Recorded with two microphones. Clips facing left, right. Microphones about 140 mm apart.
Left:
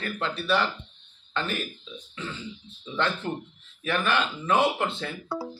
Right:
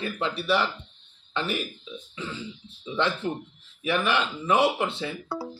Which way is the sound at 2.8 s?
15° right (ahead or behind).